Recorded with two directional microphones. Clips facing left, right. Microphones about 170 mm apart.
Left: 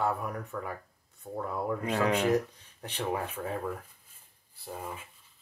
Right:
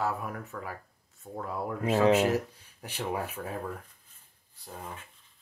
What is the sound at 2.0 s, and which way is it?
Speech, 25° right (ahead or behind).